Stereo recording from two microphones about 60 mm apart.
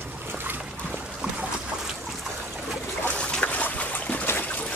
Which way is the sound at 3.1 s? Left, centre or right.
Centre.